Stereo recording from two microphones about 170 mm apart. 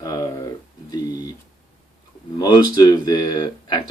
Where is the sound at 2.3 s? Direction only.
25° left (ahead or behind).